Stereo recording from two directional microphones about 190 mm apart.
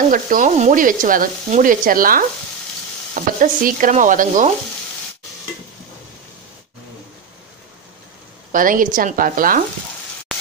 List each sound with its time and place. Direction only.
0.1 s speech: 45° right (ahead or behind)
8.5 s speech: 45° right (ahead or behind)